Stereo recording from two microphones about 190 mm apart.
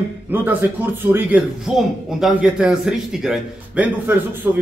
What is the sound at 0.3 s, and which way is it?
Speech, 10° right (ahead or behind).